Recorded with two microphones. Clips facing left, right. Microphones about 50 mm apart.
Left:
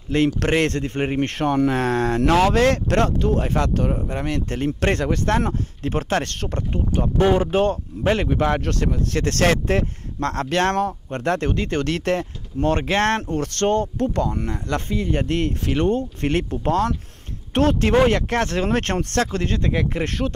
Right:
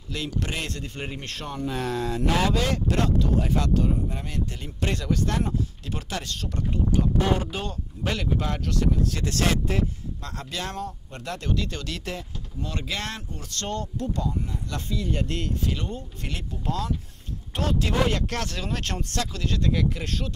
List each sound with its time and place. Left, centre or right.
0.4 s speech: left
8.3 s speech: left
10.9 s speech: left
14.9 s speech: left